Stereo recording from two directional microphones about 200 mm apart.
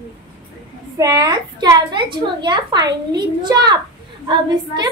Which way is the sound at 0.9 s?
20° right (ahead or behind).